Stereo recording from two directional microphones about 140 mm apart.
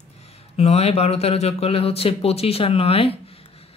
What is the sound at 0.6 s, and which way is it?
Speech, 50° left (ahead or behind).